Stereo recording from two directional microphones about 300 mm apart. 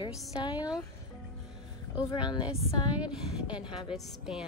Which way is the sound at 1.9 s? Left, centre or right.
Centre.